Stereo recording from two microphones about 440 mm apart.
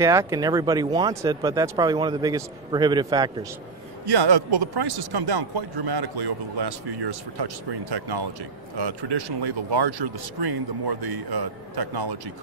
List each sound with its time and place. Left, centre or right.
0.0 s speech: centre
4.0 s speech: right